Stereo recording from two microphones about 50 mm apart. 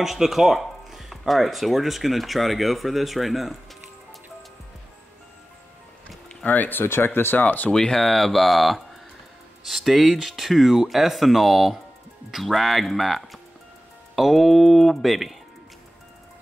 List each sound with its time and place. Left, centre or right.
0.0 s speech: centre
6.2 s speech: left
7.7 s speech: centre